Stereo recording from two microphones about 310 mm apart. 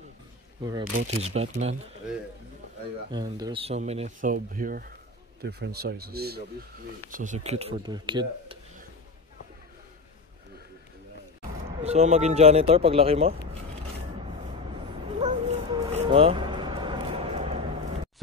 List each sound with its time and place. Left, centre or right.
1.2 s speech: centre
3.1 s speech: centre
11.8 s speech: right
15.1 s cat: right